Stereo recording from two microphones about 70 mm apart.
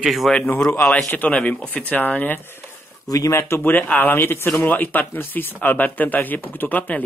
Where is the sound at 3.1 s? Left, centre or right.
Left.